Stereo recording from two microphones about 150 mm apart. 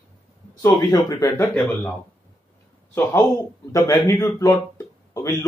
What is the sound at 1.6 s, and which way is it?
Speech, centre (ahead or behind).